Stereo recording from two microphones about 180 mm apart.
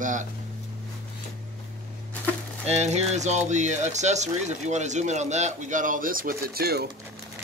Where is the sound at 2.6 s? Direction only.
40° right (ahead or behind).